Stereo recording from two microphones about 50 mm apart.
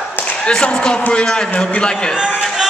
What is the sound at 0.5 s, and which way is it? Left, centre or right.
A man's voice, centre.